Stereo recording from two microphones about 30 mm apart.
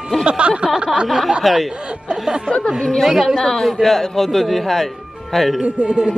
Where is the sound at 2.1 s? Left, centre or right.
Right.